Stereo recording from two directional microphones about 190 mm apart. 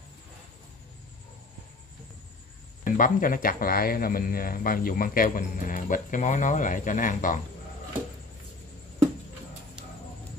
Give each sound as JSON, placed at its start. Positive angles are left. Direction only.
{"t": 2.8, "sound": "speech", "side_deg": 45}